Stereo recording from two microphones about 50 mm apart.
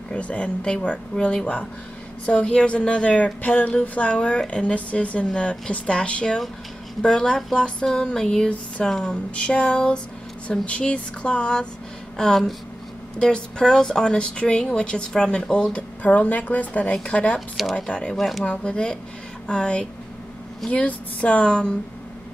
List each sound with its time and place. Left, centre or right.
0.1 s speech: left
12.2 s speech: centre
18.1 s speech: centre
18.4 s speech: left